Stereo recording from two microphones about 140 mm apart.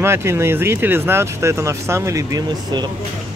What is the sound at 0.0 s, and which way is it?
Speech, 20° right (ahead or behind).